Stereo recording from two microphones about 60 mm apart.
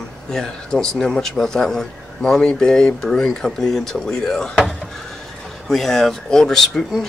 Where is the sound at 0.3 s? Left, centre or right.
Centre.